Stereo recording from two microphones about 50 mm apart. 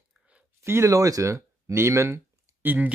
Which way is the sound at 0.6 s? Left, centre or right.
Right.